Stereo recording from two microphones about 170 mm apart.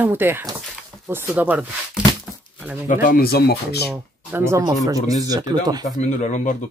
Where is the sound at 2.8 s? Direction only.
50° left (ahead or behind); by 3.8 s 70° left (ahead or behind).